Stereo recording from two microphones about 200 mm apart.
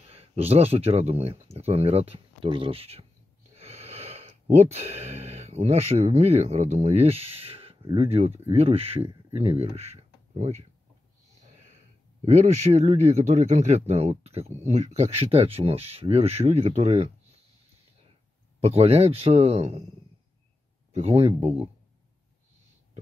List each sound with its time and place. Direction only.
0.1 s speech: 30° right (ahead or behind)
11.5 s a sound: 35° right (ahead or behind)
12.3 s a man's voice: 35° right (ahead or behind)
18.6 s a man's voice: 30° right (ahead or behind)
20.9 s speech: 30° right (ahead or behind)